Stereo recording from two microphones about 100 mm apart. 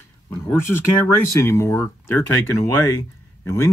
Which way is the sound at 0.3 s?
25° left (ahead or behind).